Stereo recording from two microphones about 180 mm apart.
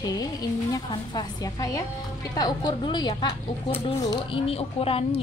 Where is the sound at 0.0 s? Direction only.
20° left (ahead or behind).